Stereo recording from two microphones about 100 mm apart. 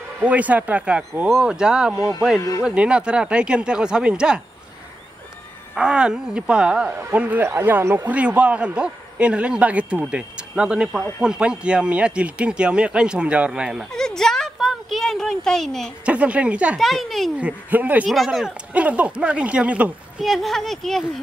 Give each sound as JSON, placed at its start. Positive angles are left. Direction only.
{"t": 0.2, "sound": "a man's voice", "side_deg": -15}
{"t": 5.8, "sound": "a man's voice", "side_deg": -10}
{"t": 13.9, "sound": "a sound", "side_deg": 5}
{"t": 16.1, "sound": "a man's voice", "side_deg": -15}
{"t": 16.7, "sound": "speech", "side_deg": 0}
{"t": 17.4, "sound": "a man's voice", "side_deg": -15}
{"t": 18.1, "sound": "speech", "side_deg": 0}
{"t": 18.7, "sound": "a man's voice", "side_deg": -15}
{"t": 20.2, "sound": "speech", "side_deg": 0}